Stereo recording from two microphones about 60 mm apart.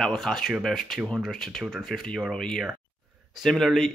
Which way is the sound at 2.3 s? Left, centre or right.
Centre.